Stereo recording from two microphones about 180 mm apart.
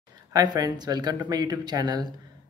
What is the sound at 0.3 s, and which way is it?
Speech, 20° right (ahead or behind).